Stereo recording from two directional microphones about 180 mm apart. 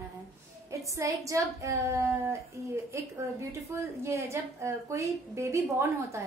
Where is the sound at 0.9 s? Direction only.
15° right (ahead or behind).